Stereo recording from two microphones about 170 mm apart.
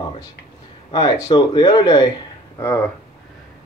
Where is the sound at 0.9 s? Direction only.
25° left (ahead or behind).